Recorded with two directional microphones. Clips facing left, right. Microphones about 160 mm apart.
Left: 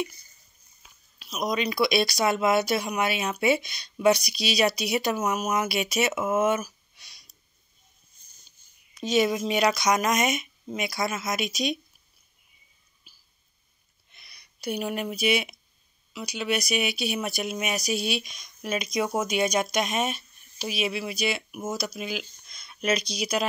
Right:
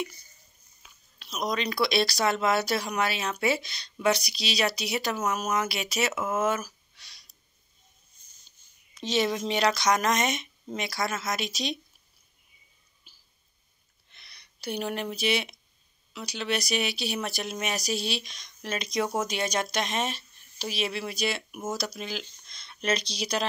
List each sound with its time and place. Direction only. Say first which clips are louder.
1.2 s speech: left 2 dB; 10° left (ahead or behind)
9.2 s speech: left 2 dB; 10° left (ahead or behind)
14.1 s speech: even; 10° left (ahead or behind)
17.9 s speech: left 3 dB; 35° right (ahead or behind)
18.2 s speech: left 3 dB; 10° left (ahead or behind)